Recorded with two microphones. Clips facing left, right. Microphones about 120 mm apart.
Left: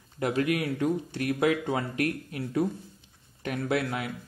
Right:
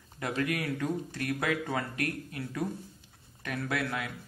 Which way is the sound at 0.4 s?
25° left (ahead or behind).